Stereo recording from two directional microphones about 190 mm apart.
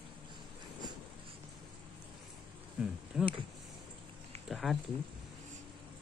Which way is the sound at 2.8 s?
5° right (ahead or behind).